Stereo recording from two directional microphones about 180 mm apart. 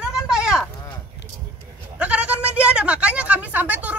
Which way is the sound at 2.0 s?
5° right (ahead or behind).